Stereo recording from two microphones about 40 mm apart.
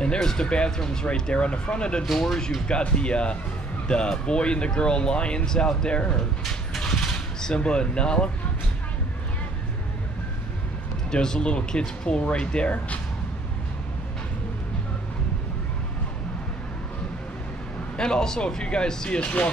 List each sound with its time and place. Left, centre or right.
0.0 s speech: centre
2.0 s speech: centre
2.7 s speech: left
7.5 s speech: left
11.1 s speech: centre
17.9 s speech: centre